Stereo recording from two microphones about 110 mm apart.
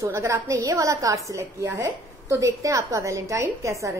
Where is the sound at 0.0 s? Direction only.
30° right (ahead or behind).